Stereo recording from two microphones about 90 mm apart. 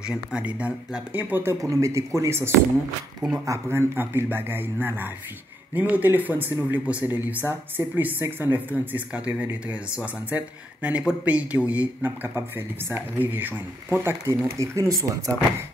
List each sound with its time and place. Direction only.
0.0 s speech: 10° right (ahead or behind)
14.0 s speech: 30° right (ahead or behind)